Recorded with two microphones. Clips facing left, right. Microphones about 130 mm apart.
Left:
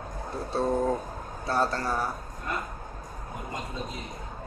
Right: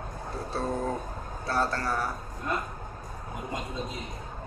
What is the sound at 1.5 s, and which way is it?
Speech, 20° left (ahead or behind).